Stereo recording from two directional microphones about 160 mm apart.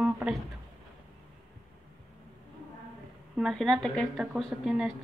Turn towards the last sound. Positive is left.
turn(degrees=-5)  # may be behind; listen again after turning